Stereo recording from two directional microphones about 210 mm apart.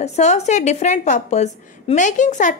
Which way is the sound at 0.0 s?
30° left (ahead or behind).